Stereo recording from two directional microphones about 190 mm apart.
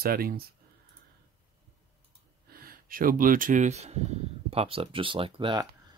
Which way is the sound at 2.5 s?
50° right (ahead or behind).